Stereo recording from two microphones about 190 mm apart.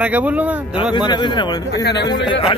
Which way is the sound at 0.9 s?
25° left (ahead or behind).